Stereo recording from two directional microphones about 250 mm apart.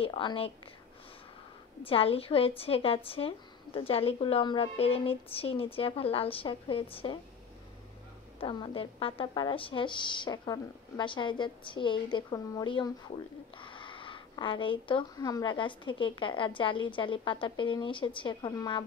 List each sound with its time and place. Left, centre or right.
0.0 s a woman's voice: centre
1.9 s a woman's voice: left
8.4 s a woman's voice: left